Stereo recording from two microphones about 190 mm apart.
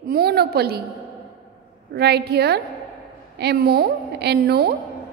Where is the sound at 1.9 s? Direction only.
60° right (ahead or behind).